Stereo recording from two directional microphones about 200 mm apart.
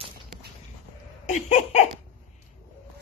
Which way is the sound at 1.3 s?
35° left (ahead or behind).